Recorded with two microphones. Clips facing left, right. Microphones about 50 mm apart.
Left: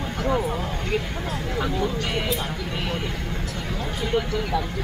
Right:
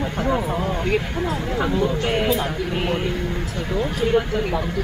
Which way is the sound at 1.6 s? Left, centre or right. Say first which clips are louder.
Right 4 dB; right.